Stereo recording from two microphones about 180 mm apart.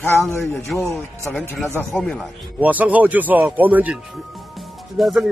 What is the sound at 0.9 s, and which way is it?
A man's voice, centre (ahead or behind).